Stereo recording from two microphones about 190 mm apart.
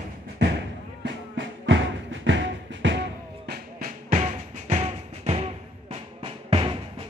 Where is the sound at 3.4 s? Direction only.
50° right (ahead or behind).